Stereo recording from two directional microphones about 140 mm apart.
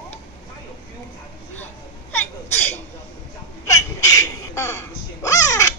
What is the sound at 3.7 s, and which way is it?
Laughter, 25° left (ahead or behind).